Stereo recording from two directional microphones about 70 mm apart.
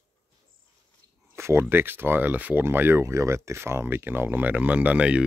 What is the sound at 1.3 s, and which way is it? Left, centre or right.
Speech, right.